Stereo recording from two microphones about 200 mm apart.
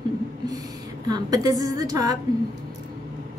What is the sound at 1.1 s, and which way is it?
A woman's voice, 20° right (ahead or behind).